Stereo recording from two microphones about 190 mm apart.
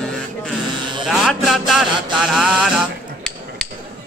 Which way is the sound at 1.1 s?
Centre (ahead or behind).